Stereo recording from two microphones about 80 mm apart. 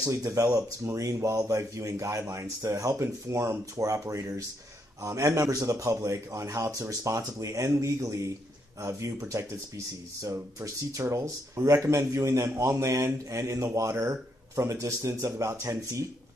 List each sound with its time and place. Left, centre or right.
0.0 s speech: right